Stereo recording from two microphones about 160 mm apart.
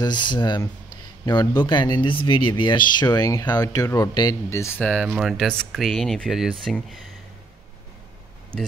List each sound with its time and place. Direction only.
0.0 s speech: 30° left (ahead or behind)
4.8 s speech: 5° right (ahead or behind)